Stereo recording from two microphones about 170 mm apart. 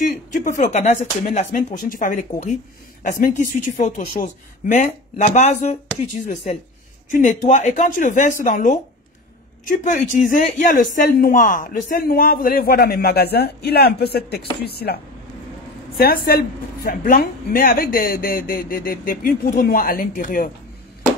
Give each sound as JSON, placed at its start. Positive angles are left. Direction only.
{"t": 0.0, "sound": "speech", "side_deg": 50}
{"t": 16.0, "sound": "speech", "side_deg": 65}